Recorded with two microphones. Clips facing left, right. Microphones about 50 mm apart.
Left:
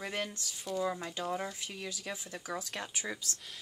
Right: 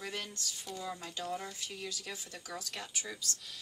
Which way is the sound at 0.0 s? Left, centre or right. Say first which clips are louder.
Left 3 dB; left.